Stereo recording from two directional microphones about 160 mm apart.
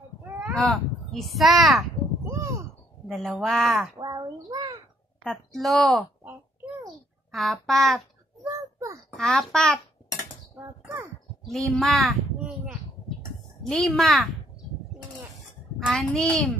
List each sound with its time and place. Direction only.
0.6 s speech: 5° left (ahead or behind)
2.2 s a sound: 20° right (ahead or behind)
3.1 s speech: centre (ahead or behind)
4.0 s a sound: 25° right (ahead or behind)
5.2 s speech: 5° left (ahead or behind)
7.2 s speech: centre (ahead or behind)
9.1 s speech: 5° left (ahead or behind)
11.4 s a sound: centre (ahead or behind)
13.7 s speech: centre (ahead or behind)
15.8 s speech: 5° left (ahead or behind)